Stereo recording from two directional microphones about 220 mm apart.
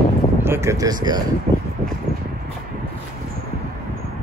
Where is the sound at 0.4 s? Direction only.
10° right (ahead or behind).